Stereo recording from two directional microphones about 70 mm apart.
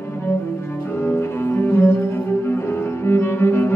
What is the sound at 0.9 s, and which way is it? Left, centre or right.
Cello, left.